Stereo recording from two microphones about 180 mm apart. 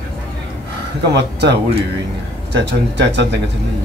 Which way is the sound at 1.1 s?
70° right (ahead or behind).